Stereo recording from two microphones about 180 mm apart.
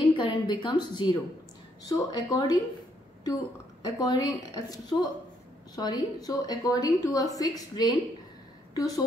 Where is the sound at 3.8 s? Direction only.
20° left (ahead or behind).